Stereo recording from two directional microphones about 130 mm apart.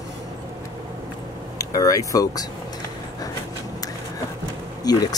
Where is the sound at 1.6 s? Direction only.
25° left (ahead or behind).